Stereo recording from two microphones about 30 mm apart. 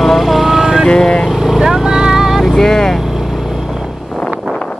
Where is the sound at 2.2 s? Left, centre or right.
Centre.